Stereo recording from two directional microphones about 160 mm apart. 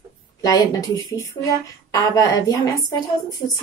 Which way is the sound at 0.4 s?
25° left (ahead or behind).